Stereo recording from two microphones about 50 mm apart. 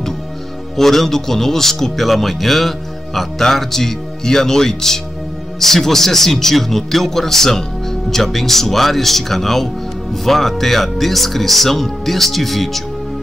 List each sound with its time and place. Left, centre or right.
0.7 s speech: centre